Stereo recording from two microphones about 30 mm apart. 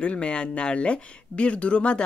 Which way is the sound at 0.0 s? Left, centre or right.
Left.